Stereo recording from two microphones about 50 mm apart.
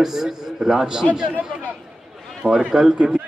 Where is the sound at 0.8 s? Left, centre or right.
Centre.